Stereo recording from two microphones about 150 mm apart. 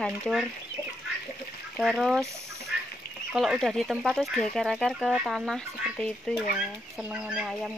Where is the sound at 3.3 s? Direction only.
Centre (ahead or behind).